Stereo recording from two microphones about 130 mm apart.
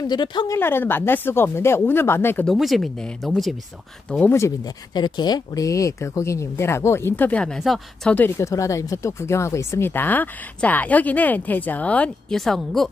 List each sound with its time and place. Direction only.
0.0 s speech: 35° left (ahead or behind)
0.5 s speech: 15° left (ahead or behind)
2.4 s speech: centre (ahead or behind)
4.3 s speech: 20° left (ahead or behind)
4.9 s speech: 35° left (ahead or behind); by 8.1 s centre (ahead or behind)
8.1 s speech: 20° left (ahead or behind); by 12.8 s centre (ahead or behind)